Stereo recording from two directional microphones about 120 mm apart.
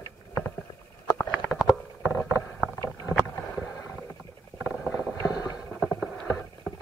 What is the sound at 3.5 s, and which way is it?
Boat, 15° left (ahead or behind).